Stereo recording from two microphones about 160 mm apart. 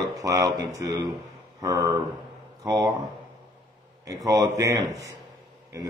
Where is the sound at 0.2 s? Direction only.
20° right (ahead or behind).